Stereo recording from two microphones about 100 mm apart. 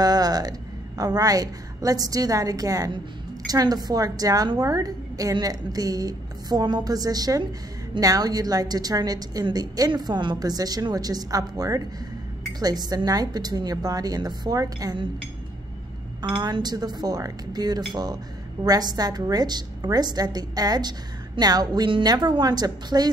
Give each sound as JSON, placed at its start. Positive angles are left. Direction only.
{"t": 0.0, "sound": "a woman's voice", "side_deg": -40}
{"t": 16.3, "sound": "a woman's voice", "side_deg": -45}